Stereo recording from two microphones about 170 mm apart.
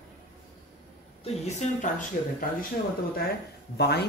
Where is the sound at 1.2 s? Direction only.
40° left (ahead or behind).